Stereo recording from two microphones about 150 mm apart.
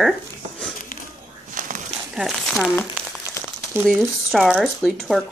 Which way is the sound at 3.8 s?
Centre (ahead or behind).